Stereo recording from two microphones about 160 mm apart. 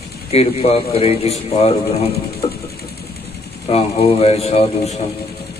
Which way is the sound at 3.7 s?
40° left (ahead or behind).